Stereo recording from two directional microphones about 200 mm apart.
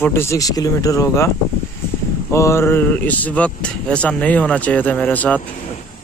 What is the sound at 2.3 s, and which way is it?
Speech, 15° left (ahead or behind).